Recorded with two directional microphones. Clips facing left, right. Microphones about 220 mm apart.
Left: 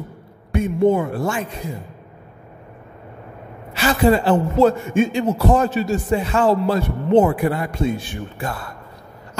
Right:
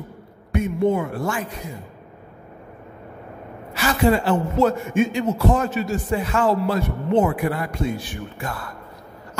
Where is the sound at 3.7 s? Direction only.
30° left (ahead or behind).